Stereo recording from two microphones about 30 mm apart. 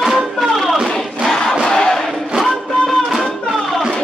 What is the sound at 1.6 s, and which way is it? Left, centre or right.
Crowd, left.